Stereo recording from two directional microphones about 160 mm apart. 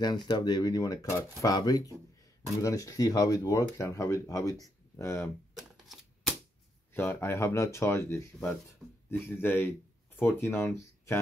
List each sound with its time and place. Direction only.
0.0 s speech: 25° left (ahead or behind)
5.6 s a sound: centre (ahead or behind)
6.9 s speech: 15° left (ahead or behind)